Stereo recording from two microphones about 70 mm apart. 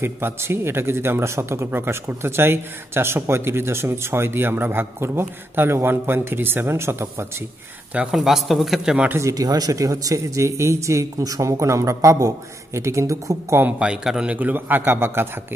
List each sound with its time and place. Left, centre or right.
0.0 s speech: right
8.1 s speech: centre
9.3 s speech: right
13.7 s a man's voice: centre; by 15.4 s right